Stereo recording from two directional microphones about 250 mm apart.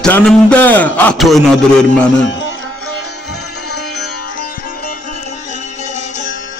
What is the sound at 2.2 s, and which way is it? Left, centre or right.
Music, left.